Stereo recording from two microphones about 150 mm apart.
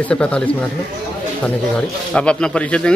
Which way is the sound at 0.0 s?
5° left (ahead or behind).